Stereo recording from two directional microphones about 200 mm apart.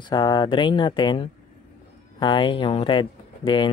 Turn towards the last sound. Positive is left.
turn(degrees=25)  # may be behind; listen again after turning